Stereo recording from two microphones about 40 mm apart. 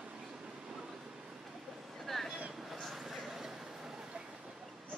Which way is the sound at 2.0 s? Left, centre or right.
Centre.